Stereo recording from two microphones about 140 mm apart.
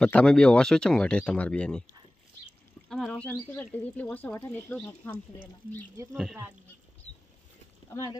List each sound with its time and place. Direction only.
0.0 s speech: 5° left (ahead or behind)
2.9 s speech: 5° left (ahead or behind)
6.0 s speech: 20° right (ahead or behind)
7.9 s speech: 20° left (ahead or behind)